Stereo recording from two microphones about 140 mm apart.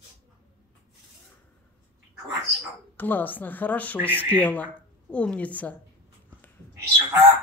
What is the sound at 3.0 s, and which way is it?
Speech, 15° left (ahead or behind).